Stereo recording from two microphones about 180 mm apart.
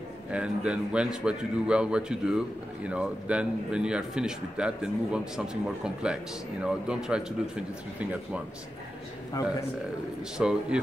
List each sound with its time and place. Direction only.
0.3 s a man's voice: 5° right (ahead or behind)
6.6 s a man's voice: 5° right (ahead or behind)
9.4 s a man's voice: 20° left (ahead or behind)
10.3 s a man's voice: 5° right (ahead or behind)